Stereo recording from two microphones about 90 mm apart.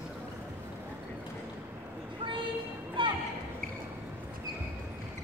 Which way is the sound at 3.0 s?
65° right (ahead or behind).